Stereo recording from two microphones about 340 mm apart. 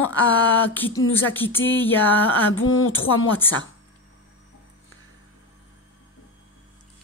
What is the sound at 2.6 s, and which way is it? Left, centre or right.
Speech, left.